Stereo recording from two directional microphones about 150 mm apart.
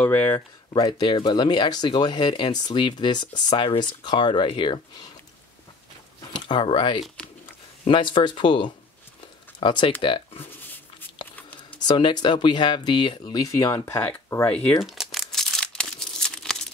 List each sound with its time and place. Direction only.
0.0 s speech: 15° left (ahead or behind)
0.7 s speech: 30° left (ahead or behind)
6.4 s speech: 35° left (ahead or behind)
11.8 s speech: 30° left (ahead or behind); by 14.8 s 15° left (ahead or behind)
14.8 s a sound: centre (ahead or behind)